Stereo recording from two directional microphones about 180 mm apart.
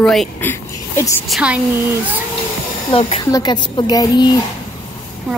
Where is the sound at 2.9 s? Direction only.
30° left (ahead or behind).